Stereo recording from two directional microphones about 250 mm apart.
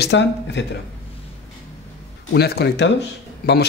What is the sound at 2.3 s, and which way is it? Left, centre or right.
Speech, left.